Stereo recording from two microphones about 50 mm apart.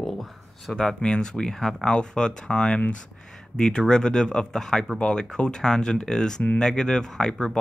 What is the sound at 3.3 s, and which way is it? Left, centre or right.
Speech, centre.